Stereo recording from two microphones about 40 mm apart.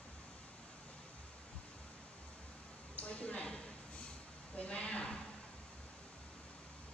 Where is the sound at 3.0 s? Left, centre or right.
Left.